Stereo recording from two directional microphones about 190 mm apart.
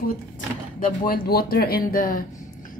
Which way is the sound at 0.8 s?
50° left (ahead or behind).